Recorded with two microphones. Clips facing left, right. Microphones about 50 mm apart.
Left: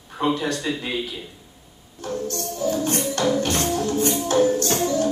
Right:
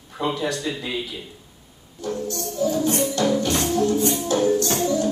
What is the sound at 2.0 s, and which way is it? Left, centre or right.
Music, left.